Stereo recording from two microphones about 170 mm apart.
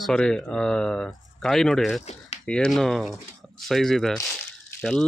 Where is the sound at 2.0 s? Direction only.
40° left (ahead or behind).